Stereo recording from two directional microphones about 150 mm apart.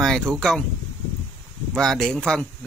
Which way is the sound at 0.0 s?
Centre (ahead or behind).